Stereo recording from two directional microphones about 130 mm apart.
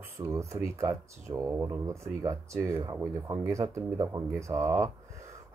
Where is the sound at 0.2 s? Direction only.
25° right (ahead or behind).